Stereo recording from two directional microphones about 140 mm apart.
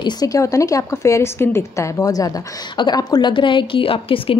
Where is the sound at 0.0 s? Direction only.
25° left (ahead or behind).